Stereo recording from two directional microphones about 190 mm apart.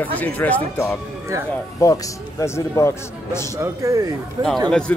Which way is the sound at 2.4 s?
15° left (ahead or behind).